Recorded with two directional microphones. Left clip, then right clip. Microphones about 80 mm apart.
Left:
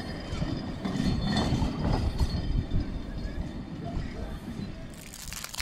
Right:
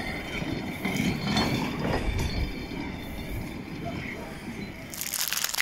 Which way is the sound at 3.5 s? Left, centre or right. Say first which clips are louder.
Right 3 dB; left.